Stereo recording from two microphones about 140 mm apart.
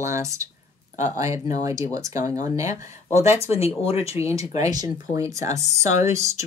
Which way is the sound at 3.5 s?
45° left (ahead or behind).